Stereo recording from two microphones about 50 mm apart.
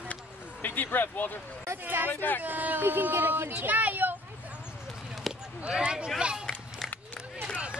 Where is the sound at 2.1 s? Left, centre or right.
Left.